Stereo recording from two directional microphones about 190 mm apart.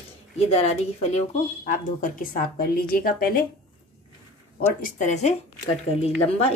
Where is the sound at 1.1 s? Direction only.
40° left (ahead or behind).